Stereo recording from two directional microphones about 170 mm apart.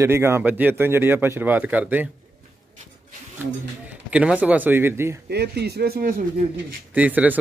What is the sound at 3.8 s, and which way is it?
Speech, 5° right (ahead or behind).